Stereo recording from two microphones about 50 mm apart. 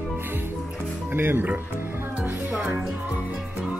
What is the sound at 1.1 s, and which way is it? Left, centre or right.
Speech, right.